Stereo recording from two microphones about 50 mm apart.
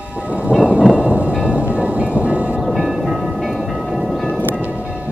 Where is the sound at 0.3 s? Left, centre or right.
Right.